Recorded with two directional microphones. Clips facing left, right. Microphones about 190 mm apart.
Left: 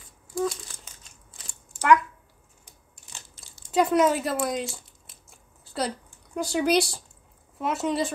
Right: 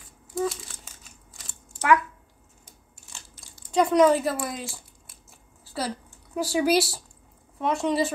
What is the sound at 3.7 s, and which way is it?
Speech, 5° left (ahead or behind).